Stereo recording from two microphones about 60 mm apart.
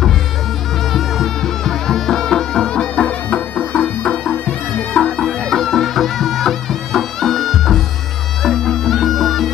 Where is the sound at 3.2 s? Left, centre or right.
Left.